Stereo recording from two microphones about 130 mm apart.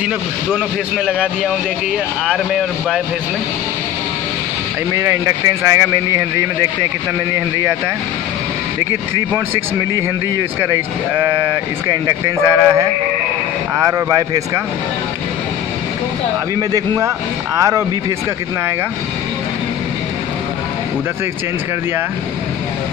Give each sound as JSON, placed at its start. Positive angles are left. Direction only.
{"t": 0.5, "sound": "speech", "side_deg": -5}
{"t": 2.2, "sound": "speech", "side_deg": -5}
{"t": 4.9, "sound": "speech", "side_deg": -25}
{"t": 10.6, "sound": "speech", "side_deg": -15}
{"t": 16.5, "sound": "speech", "side_deg": -25}